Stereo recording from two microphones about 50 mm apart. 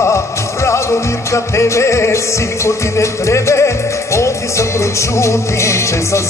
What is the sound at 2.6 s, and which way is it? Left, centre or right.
Music, left.